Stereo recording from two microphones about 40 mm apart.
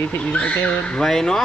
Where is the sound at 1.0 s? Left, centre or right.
Centre.